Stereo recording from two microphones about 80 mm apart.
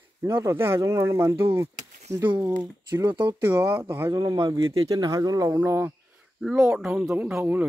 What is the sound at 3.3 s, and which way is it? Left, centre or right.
Speech, right.